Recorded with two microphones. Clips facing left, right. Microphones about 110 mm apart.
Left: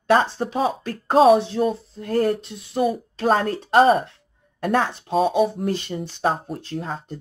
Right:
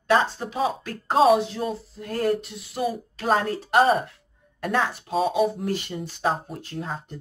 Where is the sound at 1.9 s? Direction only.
35° left (ahead or behind).